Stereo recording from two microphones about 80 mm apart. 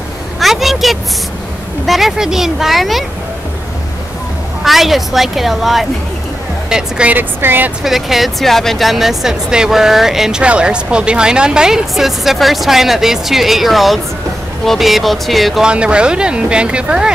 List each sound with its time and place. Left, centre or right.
0.4 s a sound: centre
1.9 s speech: centre
4.6 s speech: centre
6.7 s speech: centre
7.8 s speech: centre
15.6 s speech: centre